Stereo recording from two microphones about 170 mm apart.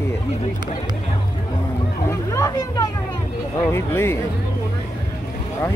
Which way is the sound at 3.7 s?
15° left (ahead or behind).